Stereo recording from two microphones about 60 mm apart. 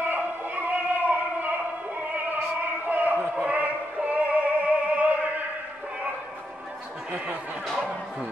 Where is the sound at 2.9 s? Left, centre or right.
Right.